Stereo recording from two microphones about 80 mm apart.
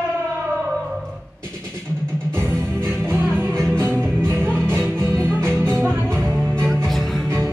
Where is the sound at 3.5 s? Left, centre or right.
Centre.